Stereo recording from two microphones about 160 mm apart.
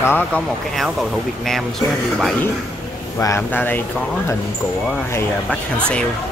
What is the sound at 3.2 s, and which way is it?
Speech, 15° left (ahead or behind).